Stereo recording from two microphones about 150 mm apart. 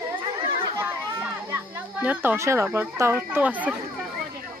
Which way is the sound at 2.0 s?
15° right (ahead or behind).